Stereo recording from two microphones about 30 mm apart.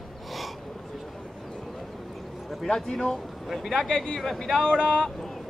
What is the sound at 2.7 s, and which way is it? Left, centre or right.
Speech, centre.